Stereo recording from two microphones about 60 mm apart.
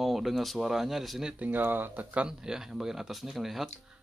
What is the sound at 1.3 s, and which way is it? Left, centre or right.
Speech, right.